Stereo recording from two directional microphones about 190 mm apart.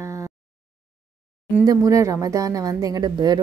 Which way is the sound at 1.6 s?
15° right (ahead or behind).